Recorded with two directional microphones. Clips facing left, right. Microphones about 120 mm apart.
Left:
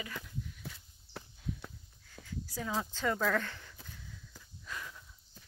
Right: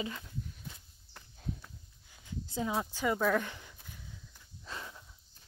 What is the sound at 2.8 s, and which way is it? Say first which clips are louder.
Speech: even; 10° right (ahead or behind).